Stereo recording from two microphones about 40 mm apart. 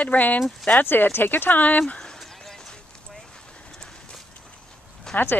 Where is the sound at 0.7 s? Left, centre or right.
Left.